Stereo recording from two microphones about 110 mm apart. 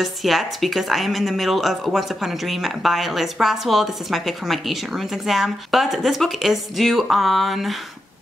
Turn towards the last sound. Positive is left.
turn(degrees=0)  # may be behind; listen again after turning